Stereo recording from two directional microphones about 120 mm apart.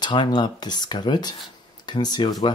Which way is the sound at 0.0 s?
40° left (ahead or behind).